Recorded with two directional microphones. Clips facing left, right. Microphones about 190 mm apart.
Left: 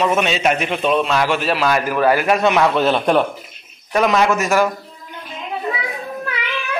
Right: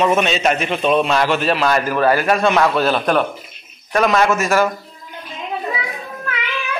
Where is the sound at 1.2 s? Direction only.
10° left (ahead or behind).